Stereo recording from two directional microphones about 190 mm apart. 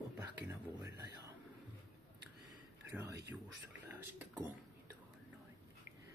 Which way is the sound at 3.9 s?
10° right (ahead or behind).